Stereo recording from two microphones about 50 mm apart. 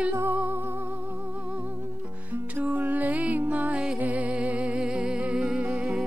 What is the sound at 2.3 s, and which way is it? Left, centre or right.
Music, right.